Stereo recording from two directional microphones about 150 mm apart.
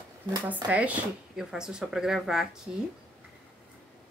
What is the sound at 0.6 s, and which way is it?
Speech, 10° right (ahead or behind).